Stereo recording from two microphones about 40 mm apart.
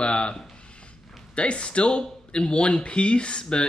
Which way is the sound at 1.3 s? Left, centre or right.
Left.